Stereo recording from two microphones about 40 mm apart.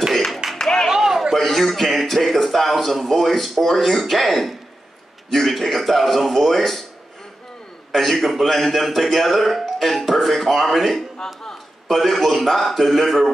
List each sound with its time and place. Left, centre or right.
0.1 s music: centre
0.6 s music: centre
0.8 s a sound: centre
1.3 s a man's voice: centre
7.9 s a man's voice: centre